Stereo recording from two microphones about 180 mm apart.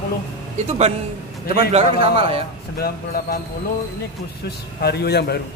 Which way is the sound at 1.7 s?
30° right (ahead or behind).